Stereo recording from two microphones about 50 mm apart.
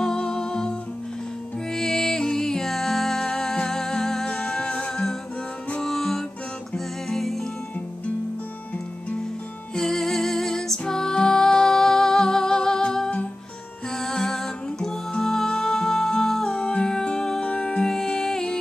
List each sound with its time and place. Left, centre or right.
0.0 s music: centre
5.8 s music: centre
9.8 s music: centre
16.5 s music: left